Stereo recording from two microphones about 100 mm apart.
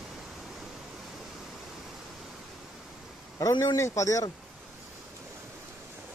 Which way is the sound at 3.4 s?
35° left (ahead or behind).